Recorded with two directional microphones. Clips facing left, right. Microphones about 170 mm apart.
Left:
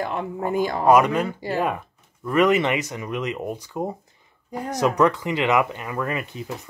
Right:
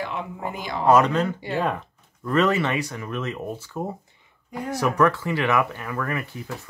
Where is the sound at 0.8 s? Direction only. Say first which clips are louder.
Even; 10° left (ahead or behind).